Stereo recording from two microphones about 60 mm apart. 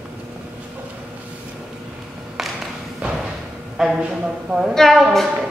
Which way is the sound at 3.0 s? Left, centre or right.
Right.